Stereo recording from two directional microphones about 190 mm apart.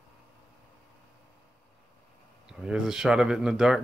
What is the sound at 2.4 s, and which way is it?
Speech, 5° right (ahead or behind).